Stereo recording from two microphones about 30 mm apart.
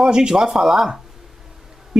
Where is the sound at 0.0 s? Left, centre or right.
Right.